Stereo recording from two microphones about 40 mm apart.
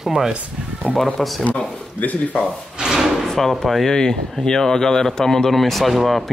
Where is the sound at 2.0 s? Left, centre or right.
Left.